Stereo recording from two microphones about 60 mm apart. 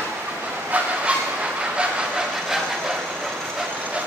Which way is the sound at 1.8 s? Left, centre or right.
Centre.